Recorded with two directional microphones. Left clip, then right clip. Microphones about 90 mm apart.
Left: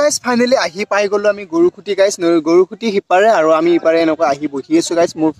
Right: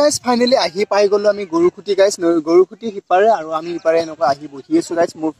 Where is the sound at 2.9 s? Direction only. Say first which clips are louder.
Left 2 dB; 30° left (ahead or behind).